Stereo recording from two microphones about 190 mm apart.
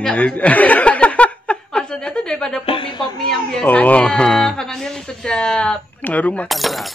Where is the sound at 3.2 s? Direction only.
5° left (ahead or behind).